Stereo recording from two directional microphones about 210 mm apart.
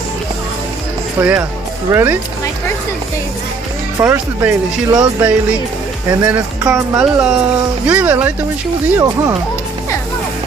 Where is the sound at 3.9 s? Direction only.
10° right (ahead or behind).